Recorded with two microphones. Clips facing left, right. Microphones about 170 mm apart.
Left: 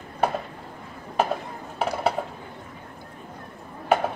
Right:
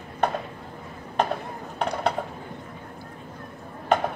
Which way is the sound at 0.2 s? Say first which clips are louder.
Left 1 dB; 5° left (ahead or behind).